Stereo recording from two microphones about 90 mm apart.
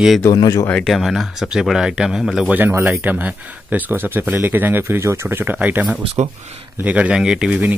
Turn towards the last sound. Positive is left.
turn(degrees=-10)  # may be behind; listen again after turning